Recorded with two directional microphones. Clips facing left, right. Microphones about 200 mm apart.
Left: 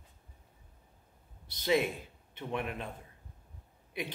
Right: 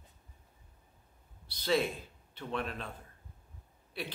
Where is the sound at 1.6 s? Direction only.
15° left (ahead or behind).